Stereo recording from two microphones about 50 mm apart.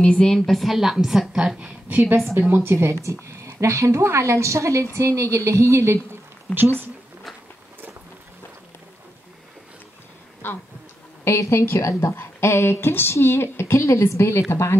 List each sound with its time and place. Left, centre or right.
0.0 s a woman's voice: centre
0.3 s a woman's voice: centre
1.6 s a woman's voice: right
2.5 s a woman's voice: right
6.5 s speech: left
10.4 s speech: left
11.2 s a woman's voice: left
12.0 s speech: left
14.5 s speech: left